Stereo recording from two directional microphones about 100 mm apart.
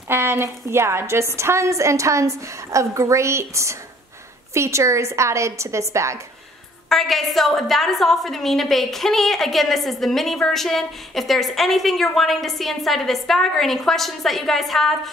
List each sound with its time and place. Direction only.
0.1 s a woman's voice: 25° right (ahead or behind)
6.9 s a woman's voice: centre (ahead or behind)